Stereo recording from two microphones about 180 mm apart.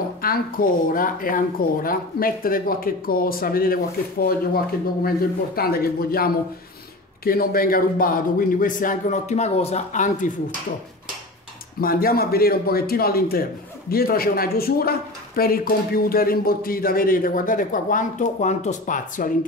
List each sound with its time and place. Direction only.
0.2 s speech: 55° left (ahead or behind)
5.6 s a man's voice: 55° left (ahead or behind)
7.2 s speech: 55° left (ahead or behind)
11.8 s a man's voice: 55° left (ahead or behind)